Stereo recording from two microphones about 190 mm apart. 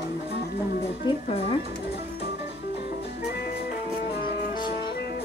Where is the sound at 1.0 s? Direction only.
25° left (ahead or behind).